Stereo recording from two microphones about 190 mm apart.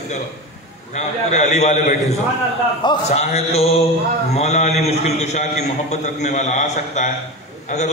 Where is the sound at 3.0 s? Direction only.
35° left (ahead or behind).